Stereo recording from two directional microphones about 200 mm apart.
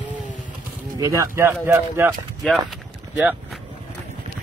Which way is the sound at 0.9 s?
15° right (ahead or behind).